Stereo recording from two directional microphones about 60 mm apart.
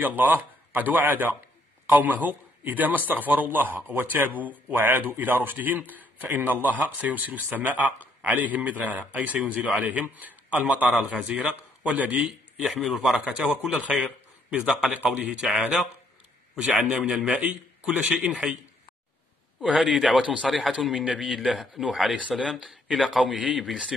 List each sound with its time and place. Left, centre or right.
0.0 s a man's voice: right
12.2 s a man's voice: centre
19.6 s a man's voice: centre
21.8 s a man's voice: centre
22.8 s speech: centre
23.3 s a man's voice: centre